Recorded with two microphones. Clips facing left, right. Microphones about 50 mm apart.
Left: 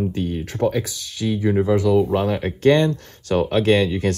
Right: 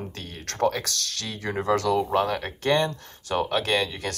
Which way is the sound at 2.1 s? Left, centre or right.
Left.